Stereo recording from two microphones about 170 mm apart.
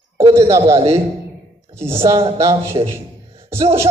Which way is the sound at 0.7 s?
35° right (ahead or behind).